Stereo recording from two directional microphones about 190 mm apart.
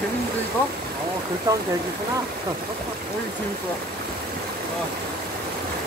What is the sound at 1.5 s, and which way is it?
Speech, 20° right (ahead or behind).